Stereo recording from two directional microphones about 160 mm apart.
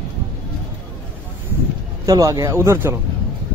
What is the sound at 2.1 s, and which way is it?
Speech, 20° right (ahead or behind).